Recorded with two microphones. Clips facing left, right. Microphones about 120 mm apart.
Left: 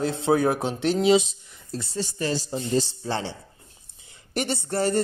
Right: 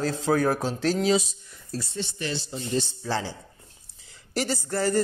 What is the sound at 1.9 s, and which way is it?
Speech, 35° left (ahead or behind).